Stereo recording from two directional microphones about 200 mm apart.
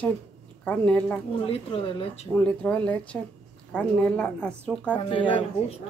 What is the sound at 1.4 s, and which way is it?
Speech, 30° left (ahead or behind).